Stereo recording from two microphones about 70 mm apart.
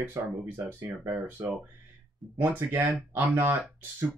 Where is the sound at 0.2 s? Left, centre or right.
Right.